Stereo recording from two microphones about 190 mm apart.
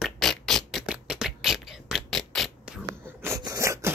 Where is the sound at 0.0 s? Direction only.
Centre (ahead or behind).